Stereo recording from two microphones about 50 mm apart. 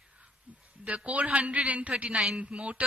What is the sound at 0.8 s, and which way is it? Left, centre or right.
A man's voice, right.